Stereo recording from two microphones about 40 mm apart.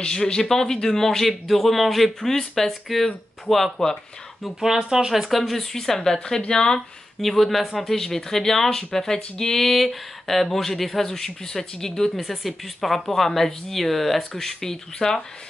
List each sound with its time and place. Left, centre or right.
0.0 s speech: left
4.6 s speech: centre
5.3 s speech: centre
7.2 s speech: centre
12.2 s speech: centre